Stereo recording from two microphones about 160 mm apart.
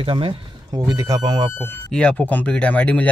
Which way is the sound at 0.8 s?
20° right (ahead or behind).